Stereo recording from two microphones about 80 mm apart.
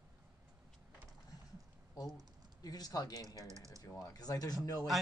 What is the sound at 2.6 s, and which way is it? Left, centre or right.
Speech, left.